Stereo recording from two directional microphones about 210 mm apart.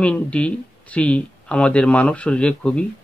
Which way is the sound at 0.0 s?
5° left (ahead or behind).